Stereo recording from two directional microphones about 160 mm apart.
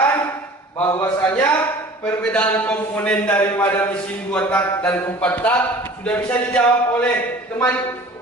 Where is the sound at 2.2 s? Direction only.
5° left (ahead or behind).